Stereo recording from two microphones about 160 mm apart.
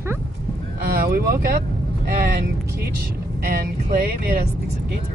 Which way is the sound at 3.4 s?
65° right (ahead or behind).